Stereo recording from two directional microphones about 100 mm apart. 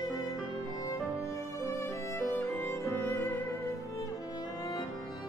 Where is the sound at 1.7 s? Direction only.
25° left (ahead or behind).